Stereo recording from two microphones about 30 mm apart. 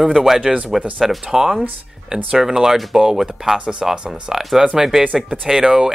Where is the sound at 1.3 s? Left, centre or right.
Right.